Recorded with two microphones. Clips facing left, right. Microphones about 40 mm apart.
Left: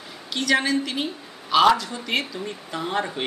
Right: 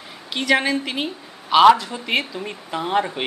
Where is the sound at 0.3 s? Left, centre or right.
Right.